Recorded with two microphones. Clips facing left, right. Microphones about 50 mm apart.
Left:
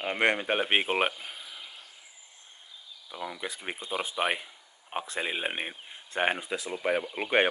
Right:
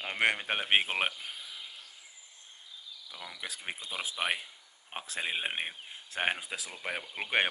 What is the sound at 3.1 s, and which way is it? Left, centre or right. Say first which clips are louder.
Speech: left 9 dB; left.